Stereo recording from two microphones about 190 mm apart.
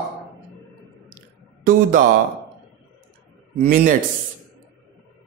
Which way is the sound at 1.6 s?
45° right (ahead or behind).